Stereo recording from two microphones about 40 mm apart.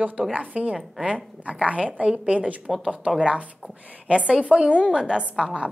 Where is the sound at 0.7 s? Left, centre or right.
Right.